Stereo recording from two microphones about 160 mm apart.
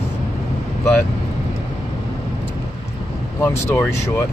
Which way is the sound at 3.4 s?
15° left (ahead or behind).